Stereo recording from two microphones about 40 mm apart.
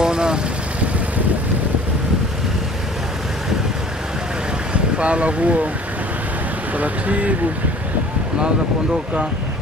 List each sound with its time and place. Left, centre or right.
0.0 s vehicle: right
4.9 s speech: right
6.8 s speech: right